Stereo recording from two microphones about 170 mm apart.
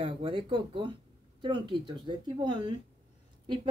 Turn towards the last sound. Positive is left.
turn(degrees=-25)  # may be behind; listen again after turning